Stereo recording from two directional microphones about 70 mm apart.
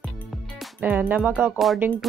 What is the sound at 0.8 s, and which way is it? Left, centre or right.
Speech, right.